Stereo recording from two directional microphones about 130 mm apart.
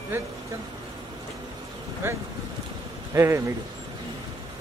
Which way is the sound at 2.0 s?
20° right (ahead or behind).